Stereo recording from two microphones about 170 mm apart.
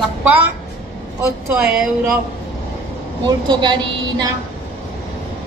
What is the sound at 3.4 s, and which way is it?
Speech, 25° right (ahead or behind).